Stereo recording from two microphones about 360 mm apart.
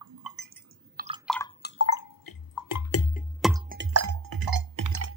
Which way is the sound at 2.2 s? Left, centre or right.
Left.